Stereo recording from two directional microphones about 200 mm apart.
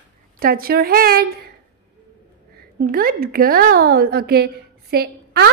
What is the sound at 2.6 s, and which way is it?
A woman's voice, 50° right (ahead or behind).